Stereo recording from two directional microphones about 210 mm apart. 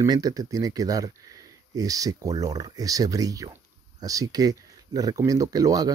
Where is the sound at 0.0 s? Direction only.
20° right (ahead or behind).